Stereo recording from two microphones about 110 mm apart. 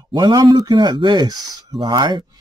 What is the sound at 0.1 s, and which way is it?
Speech, 45° right (ahead or behind).